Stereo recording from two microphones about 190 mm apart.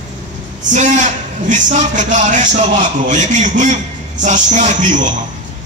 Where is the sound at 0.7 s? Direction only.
40° right (ahead or behind).